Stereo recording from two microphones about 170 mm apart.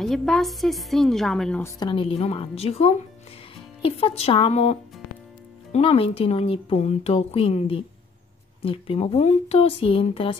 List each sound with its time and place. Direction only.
0.0 s a woman's voice: centre (ahead or behind)
1.6 s speech: 25° left (ahead or behind)